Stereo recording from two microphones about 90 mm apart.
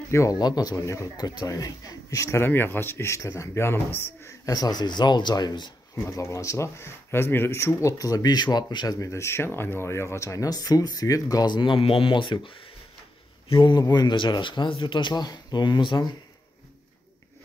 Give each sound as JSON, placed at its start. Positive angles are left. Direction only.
{"t": 0.1, "sound": "speech", "side_deg": 35}
{"t": 0.4, "sound": "a man's voice", "side_deg": 50}
{"t": 4.5, "sound": "speech", "side_deg": 45}
{"t": 5.9, "sound": "speech", "side_deg": 30}